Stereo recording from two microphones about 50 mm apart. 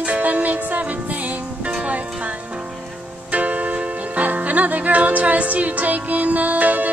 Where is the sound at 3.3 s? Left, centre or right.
Right.